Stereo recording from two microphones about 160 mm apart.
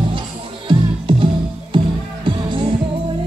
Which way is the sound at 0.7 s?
35° right (ahead or behind).